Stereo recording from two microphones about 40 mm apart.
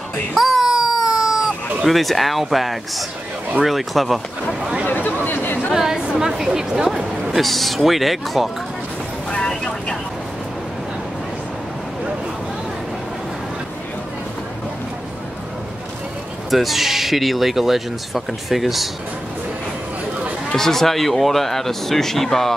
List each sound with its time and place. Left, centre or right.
0.3 s a sound: centre
1.9 s speech: centre
4.8 s chatter: left
5.8 s chatter: centre
6.1 s a sound: centre
6.7 s speech: centre
7.3 s speech: centre
16.4 s speech: centre
20.5 s speech: centre